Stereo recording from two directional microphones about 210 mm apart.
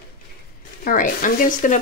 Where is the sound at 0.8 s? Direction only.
40° left (ahead or behind).